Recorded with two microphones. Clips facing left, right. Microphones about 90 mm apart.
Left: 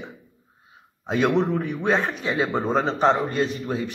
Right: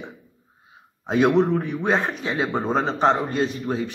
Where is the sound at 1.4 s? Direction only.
5° right (ahead or behind).